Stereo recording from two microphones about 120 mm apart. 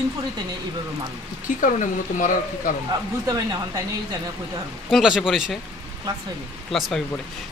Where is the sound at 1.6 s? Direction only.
90° left.